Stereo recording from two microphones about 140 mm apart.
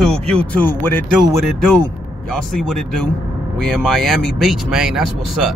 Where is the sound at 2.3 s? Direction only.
5° left (ahead or behind).